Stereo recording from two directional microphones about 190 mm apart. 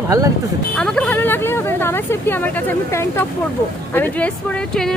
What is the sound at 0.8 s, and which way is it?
A woman's voice, 5° left (ahead or behind).